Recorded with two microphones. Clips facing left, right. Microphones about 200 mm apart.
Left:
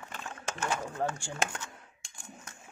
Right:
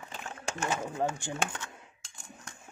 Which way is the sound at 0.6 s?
10° right (ahead or behind).